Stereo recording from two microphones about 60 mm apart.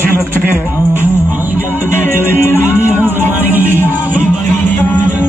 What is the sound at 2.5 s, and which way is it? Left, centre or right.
Music, right.